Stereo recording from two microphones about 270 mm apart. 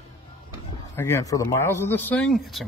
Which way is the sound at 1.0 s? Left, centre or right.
Centre.